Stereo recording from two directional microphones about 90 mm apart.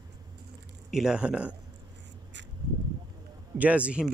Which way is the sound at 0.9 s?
10° right (ahead or behind).